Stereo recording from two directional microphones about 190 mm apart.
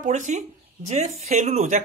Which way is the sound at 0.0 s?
40° right (ahead or behind).